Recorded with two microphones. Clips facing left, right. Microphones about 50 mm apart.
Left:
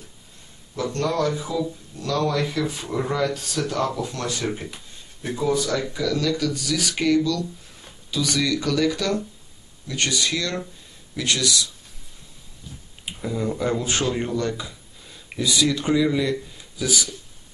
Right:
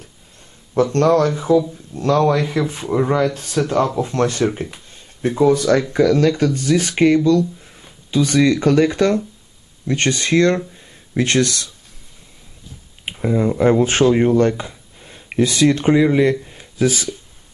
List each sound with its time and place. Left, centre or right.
0.9 s speech: right
5.2 s speech: right
13.0 s a sound: right
13.6 s speech: right